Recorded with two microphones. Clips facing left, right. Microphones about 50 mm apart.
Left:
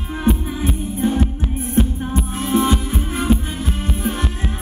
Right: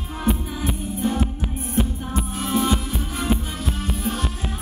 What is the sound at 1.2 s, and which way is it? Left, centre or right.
Music, centre.